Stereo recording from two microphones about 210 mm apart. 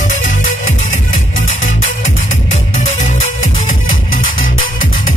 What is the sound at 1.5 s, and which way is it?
Music, 65° left (ahead or behind).